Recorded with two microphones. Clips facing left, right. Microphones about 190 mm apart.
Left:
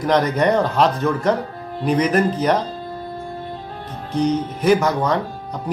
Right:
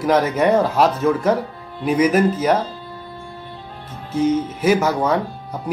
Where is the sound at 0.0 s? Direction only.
5° right (ahead or behind).